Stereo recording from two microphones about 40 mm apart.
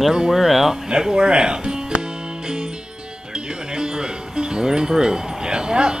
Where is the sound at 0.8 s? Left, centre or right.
Centre.